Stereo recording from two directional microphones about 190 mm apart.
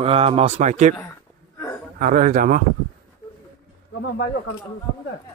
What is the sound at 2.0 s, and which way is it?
Speech, 45° right (ahead or behind).